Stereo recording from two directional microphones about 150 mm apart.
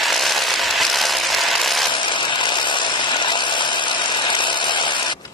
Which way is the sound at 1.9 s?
35° left (ahead or behind).